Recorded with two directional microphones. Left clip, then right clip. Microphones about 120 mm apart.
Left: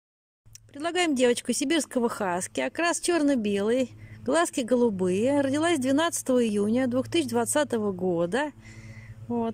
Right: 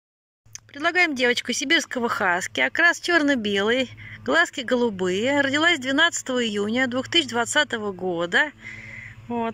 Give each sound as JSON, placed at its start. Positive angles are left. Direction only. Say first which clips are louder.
{"t": 0.5, "sound": "speech", "louder": "right 7 dB", "side_deg": 25}